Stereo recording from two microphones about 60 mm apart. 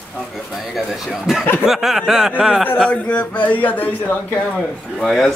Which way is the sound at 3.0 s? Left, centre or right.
Left.